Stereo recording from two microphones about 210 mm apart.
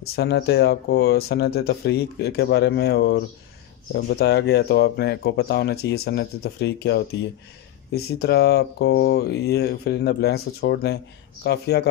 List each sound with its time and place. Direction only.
0.0 s speech: 50° left (ahead or behind)